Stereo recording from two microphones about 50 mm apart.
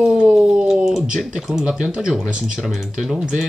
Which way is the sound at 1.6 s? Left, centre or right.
Centre.